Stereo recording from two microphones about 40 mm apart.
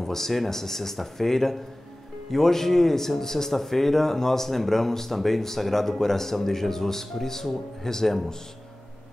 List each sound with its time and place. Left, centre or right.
0.0 s speech: centre